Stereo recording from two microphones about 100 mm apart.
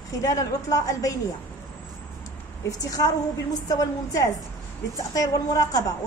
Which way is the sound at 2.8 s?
35° left (ahead or behind).